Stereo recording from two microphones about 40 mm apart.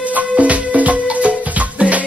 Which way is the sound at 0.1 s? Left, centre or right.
Right.